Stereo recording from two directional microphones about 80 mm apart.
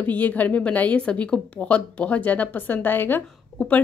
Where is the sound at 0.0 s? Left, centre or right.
Left.